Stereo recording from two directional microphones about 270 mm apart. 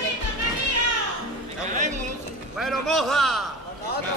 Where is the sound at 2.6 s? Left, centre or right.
Centre.